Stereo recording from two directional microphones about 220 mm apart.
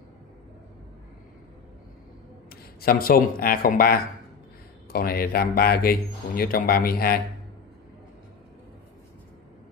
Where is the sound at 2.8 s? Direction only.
40° left (ahead or behind).